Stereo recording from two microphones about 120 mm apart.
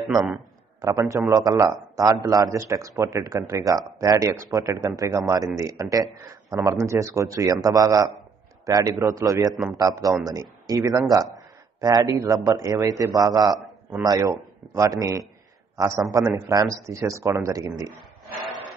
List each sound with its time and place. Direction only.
0.7 s a man's voice: 30° right (ahead or behind)
11.3 s a sound: 30° right (ahead or behind)
12.4 s a man's voice: 30° right (ahead or behind)